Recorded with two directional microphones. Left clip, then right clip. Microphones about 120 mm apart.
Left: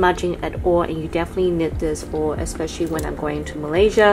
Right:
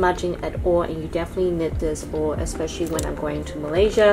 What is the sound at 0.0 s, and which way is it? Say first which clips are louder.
A woman's voice: left 3 dB; 25° left (ahead or behind).